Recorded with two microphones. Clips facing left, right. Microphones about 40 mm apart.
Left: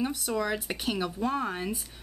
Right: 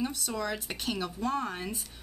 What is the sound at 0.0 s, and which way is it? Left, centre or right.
Speech, centre.